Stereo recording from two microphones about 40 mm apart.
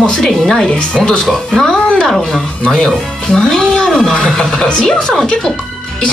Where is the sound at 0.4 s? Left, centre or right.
Centre.